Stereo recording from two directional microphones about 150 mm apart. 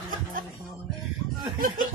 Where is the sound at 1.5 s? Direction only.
75° right (ahead or behind).